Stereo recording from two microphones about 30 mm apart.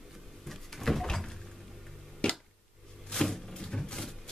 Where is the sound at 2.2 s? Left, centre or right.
Left.